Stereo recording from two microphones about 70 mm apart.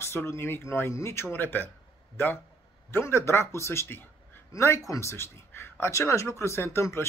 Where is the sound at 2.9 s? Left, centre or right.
Left.